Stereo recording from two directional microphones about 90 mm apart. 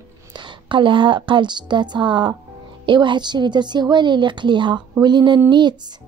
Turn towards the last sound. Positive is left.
turn(degrees=-55)  # may be behind; listen again after turning